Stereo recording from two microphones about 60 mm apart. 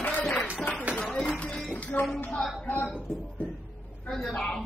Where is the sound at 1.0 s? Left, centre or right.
Centre.